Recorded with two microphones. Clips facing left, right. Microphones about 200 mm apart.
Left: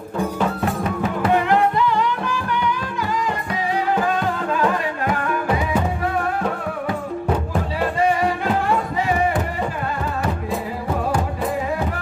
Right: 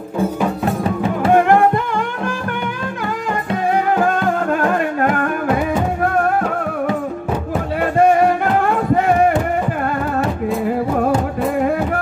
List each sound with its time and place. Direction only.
0.7 s music: 30° right (ahead or behind)
1.3 s music: 50° right (ahead or behind)
3.7 s music: 55° right (ahead or behind)
8.0 s music: 55° right (ahead or behind)